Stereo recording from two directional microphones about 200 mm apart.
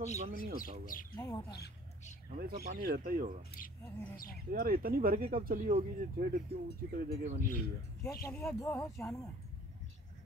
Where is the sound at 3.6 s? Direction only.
45° left (ahead or behind).